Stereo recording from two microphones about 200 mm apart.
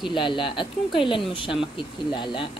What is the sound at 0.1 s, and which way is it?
Speech, 25° left (ahead or behind).